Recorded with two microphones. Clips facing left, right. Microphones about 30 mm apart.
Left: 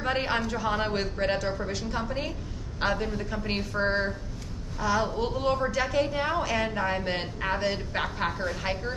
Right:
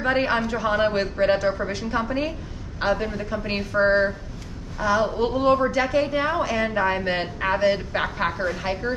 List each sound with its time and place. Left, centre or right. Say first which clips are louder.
0.0 s speech: right 6 dB; centre
2.8 s a woman's voice: right 4 dB; centre
6.4 s a woman's voice: right 4 dB; centre
6.7 s speech: right 6 dB; right